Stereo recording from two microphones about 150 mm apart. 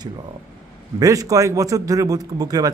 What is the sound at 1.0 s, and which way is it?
Speech, 20° right (ahead or behind).